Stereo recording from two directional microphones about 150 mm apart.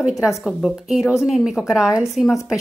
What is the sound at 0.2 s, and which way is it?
A woman's voice, 5° right (ahead or behind).